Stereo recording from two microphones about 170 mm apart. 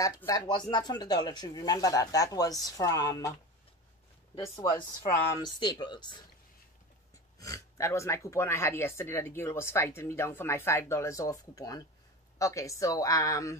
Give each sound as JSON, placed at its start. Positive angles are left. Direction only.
{"t": 0.0, "sound": "speech", "side_deg": 20}
{"t": 4.6, "sound": "speech", "side_deg": 25}
{"t": 7.3, "sound": "speech", "side_deg": 20}